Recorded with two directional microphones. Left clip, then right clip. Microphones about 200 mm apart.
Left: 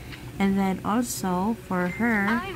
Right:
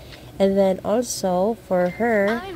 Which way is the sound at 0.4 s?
10° right (ahead or behind).